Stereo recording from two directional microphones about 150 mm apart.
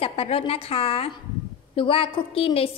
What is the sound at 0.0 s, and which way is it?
A woman's voice, 40° left (ahead or behind).